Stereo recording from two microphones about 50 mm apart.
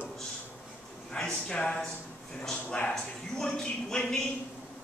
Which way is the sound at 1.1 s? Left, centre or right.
Centre.